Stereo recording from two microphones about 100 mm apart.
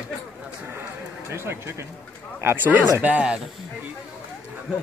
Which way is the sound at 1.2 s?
25° right (ahead or behind).